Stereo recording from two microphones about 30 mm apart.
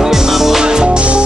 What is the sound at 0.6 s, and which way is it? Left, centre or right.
Music, right.